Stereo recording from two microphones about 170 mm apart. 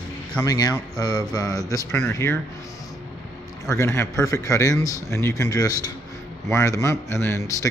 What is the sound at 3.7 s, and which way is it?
A man's voice, 15° left (ahead or behind).